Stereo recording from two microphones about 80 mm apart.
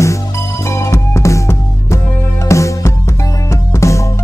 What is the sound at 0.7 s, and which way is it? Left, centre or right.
Music, left.